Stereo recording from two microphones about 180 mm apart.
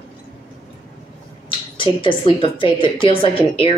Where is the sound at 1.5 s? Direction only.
30° left (ahead or behind).